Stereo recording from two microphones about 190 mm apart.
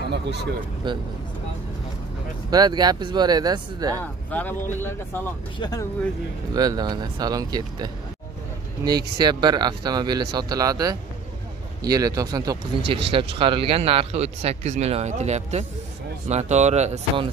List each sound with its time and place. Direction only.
0.1 s speech: 60° right (ahead or behind)
0.8 s speech: 25° right (ahead or behind)
2.5 s speech: 20° right (ahead or behind)
4.0 s speech: 10° left (ahead or behind)
6.5 s speech: 20° right (ahead or behind)
9.2 s speech: 20° right (ahead or behind)